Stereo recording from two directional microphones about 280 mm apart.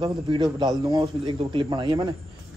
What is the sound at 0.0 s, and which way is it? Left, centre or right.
A man's voice, centre.